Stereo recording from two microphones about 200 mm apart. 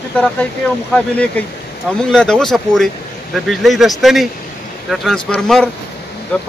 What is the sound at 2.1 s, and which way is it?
A man's voice, 5° left (ahead or behind).